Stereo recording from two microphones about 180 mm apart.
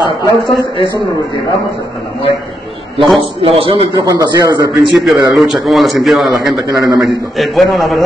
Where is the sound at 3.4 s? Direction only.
30° right (ahead or behind).